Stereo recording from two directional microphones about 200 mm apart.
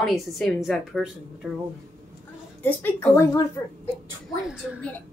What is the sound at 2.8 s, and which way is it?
Speech, 10° left (ahead or behind).